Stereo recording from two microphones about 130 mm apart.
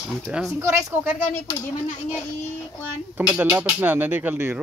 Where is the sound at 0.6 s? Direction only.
20° right (ahead or behind).